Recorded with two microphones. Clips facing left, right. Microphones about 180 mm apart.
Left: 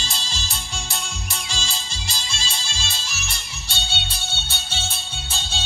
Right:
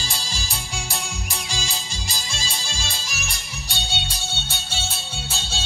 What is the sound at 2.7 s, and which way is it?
Music, 10° right (ahead or behind).